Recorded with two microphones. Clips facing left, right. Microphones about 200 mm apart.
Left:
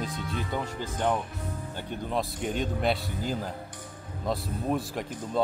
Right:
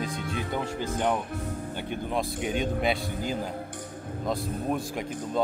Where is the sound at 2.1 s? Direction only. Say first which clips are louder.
Right 1 dB; 5° right (ahead or behind).